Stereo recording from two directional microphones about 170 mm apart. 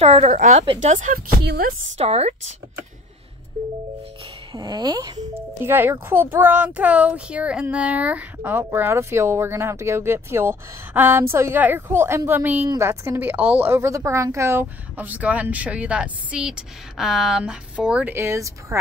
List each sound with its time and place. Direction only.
0.0 s a woman's voice: 40° right (ahead or behind)
1.4 s speech: 75° right (ahead or behind)
2.0 s a woman's voice: 40° right (ahead or behind)
4.6 s speech: 25° right (ahead or behind)
5.6 s a child's voice: 15° right (ahead or behind)